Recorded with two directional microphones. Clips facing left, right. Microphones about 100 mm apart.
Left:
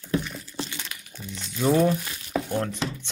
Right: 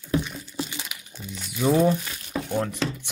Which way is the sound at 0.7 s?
15° right (ahead or behind).